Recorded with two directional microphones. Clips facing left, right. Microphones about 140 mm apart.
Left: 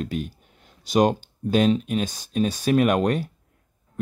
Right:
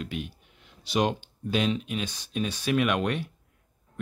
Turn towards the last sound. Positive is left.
turn(degrees=40)  # may be behind; listen again after turning